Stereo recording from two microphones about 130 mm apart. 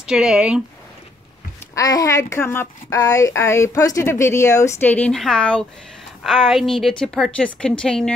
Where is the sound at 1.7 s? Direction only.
25° left (ahead or behind).